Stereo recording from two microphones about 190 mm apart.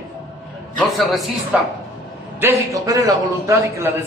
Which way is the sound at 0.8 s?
Centre (ahead or behind).